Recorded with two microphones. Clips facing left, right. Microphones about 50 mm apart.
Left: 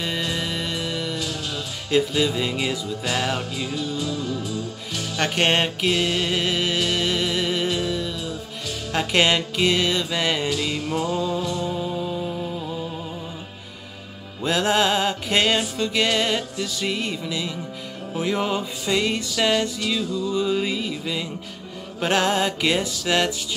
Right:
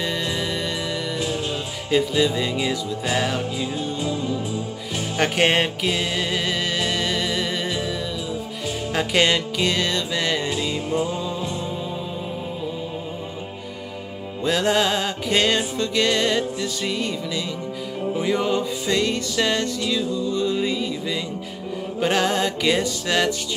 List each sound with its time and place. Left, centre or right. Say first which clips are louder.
0.4 s music: right 1 dB; centre
3.5 s music: right 1 dB; right
5.2 s music: right 1 dB; centre
6.3 s music: left 1 dB; centre
10.5 s music: right 1 dB; right
14.4 s music: even; centre